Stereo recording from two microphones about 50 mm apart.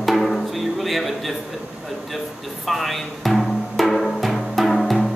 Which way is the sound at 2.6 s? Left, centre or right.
Centre.